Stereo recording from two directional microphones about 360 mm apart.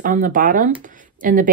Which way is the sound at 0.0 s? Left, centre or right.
Right.